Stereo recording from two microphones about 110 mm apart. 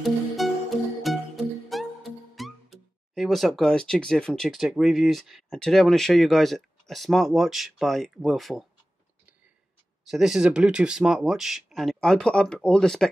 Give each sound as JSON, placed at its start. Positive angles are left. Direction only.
{"t": 0.0, "sound": "music", "side_deg": 0}
{"t": 10.0, "sound": "speech", "side_deg": -5}